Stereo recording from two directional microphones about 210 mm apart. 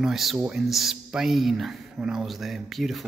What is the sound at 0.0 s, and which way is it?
Speech, centre (ahead or behind).